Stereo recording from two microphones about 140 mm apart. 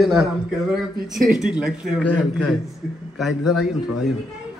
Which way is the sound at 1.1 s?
Centre (ahead or behind).